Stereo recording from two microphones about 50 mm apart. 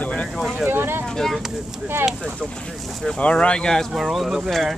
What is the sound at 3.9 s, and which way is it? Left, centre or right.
Speech, centre.